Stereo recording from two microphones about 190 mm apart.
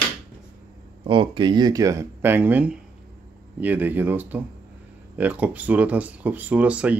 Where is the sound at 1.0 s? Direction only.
25° right (ahead or behind).